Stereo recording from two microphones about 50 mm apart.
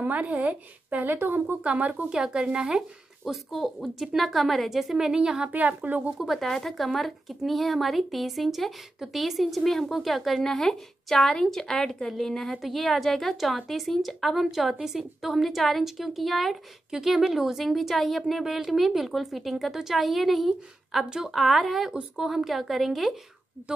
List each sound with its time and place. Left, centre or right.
0.0 s speech: right
1.1 s a woman's voice: right
1.6 s speech: right
2.0 s speech: centre
3.3 s a woman's voice: centre
5.5 s speech: right
6.1 s a woman's voice: centre
6.4 s a woman's voice: centre
9.6 s speech: centre
9.8 s a woman's voice: centre
21.0 s speech: centre
21.4 s a woman's voice: centre
21.9 s a woman's voice: centre